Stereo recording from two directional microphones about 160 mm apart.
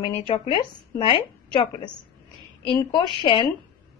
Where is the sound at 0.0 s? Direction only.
35° left (ahead or behind).